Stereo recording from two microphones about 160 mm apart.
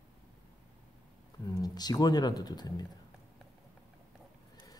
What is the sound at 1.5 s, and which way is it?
Speech, 25° left (ahead or behind).